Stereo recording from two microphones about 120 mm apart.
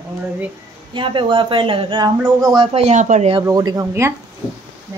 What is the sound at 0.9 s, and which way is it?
Speech, 45° right (ahead or behind).